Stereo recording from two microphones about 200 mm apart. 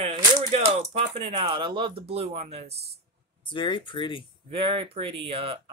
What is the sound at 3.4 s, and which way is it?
Speech, 25° left (ahead or behind).